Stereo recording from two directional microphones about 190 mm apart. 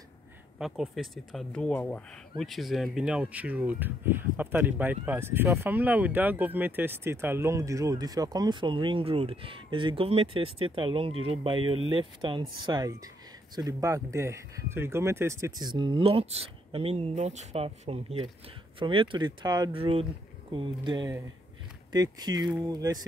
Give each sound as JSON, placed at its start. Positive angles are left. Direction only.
{"t": 0.6, "sound": "speech", "side_deg": 0}